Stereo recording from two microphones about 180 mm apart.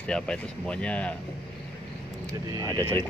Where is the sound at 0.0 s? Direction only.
5° left (ahead or behind).